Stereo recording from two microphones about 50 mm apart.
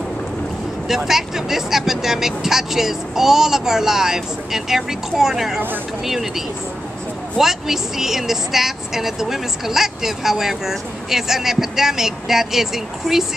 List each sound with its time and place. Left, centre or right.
0.8 s speech: centre